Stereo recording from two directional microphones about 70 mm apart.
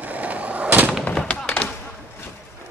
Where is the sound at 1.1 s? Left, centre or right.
Centre.